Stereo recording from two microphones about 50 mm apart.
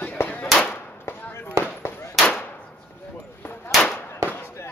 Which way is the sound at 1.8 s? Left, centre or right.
Left.